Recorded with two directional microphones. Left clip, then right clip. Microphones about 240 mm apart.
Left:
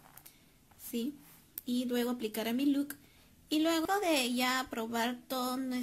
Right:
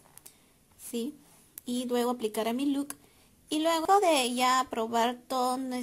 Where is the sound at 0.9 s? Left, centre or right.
Centre.